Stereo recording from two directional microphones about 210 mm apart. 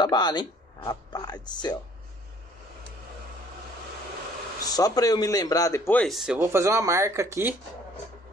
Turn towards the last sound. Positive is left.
turn(degrees=-15)  # may be behind; listen again after turning